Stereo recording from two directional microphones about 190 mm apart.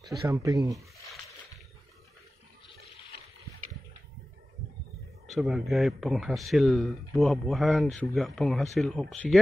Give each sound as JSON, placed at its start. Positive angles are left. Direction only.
{"t": 0.3, "sound": "speech", "side_deg": -15}
{"t": 5.3, "sound": "speech", "side_deg": 0}